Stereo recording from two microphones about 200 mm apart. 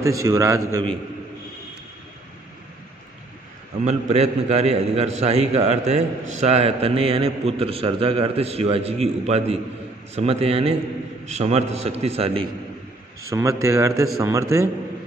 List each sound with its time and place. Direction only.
0.0 s a man's voice: 15° right (ahead or behind)
3.8 s a man's voice: 30° right (ahead or behind)
13.2 s a man's voice: 15° right (ahead or behind)